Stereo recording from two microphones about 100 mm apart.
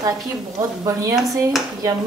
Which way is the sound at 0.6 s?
35° right (ahead or behind).